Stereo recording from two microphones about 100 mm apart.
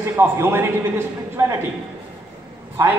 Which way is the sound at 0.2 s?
25° right (ahead or behind).